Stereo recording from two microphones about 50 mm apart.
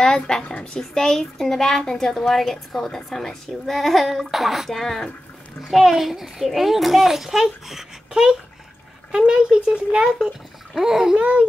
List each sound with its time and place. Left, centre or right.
0.0 s a child's voice: centre